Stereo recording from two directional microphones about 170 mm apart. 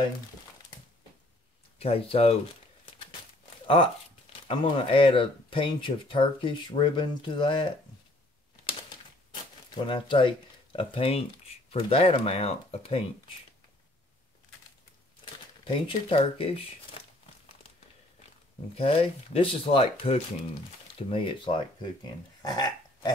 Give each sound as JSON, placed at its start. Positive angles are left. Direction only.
{"t": 1.8, "sound": "speech", "side_deg": 35}
{"t": 3.6, "sound": "speech", "side_deg": 30}
{"t": 9.3, "sound": "speech", "side_deg": 30}
{"t": 15.2, "sound": "speech", "side_deg": 30}
{"t": 18.8, "sound": "speech", "side_deg": 35}
{"t": 22.4, "sound": "burping", "side_deg": 25}